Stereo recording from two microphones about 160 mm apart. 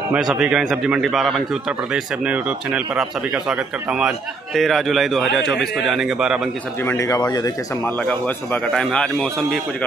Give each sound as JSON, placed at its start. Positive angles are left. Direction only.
{"t": 0.1, "sound": "speech", "side_deg": -5}
{"t": 6.9, "sound": "speech", "side_deg": 20}
{"t": 7.8, "sound": "speech", "side_deg": 5}